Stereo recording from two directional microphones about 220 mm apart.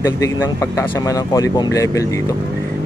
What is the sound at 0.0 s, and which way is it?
Speech, 15° left (ahead or behind).